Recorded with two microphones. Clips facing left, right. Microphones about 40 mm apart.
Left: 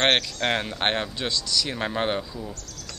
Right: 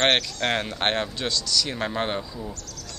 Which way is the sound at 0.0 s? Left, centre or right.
Centre.